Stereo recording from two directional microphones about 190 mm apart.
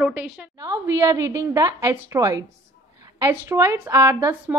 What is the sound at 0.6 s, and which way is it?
A woman's voice, 15° right (ahead or behind).